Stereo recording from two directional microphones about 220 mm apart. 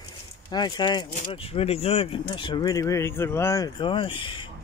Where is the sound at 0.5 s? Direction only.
20° left (ahead or behind).